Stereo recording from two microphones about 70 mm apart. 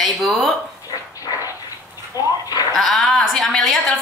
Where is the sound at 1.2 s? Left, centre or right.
Left.